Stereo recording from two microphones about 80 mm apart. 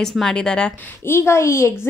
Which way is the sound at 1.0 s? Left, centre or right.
Left.